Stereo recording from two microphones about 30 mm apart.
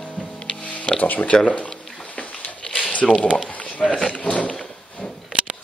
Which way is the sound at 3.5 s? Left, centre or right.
Left.